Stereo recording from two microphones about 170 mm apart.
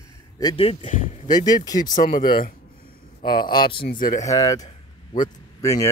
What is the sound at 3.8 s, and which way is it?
Speech, 55° left (ahead or behind).